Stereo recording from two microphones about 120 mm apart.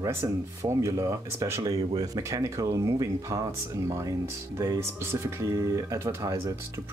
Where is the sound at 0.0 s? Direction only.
25° right (ahead or behind).